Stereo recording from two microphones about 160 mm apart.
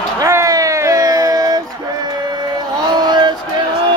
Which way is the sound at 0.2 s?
20° right (ahead or behind).